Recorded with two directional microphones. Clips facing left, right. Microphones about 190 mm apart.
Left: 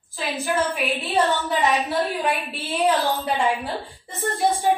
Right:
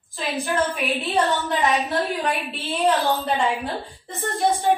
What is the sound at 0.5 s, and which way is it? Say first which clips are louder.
A woman's voice: right 1 dB; centre (ahead or behind).